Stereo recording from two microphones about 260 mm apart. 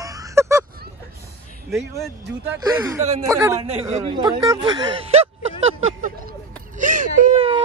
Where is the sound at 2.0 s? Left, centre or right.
Centre.